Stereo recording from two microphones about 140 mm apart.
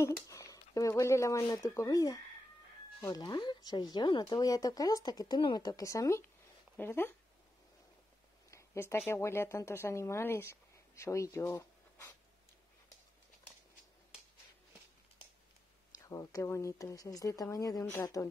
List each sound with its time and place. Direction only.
0.0 s speech: 20° left (ahead or behind)
8.5 s speech: 20° left (ahead or behind)
16.0 s speech: 20° left (ahead or behind)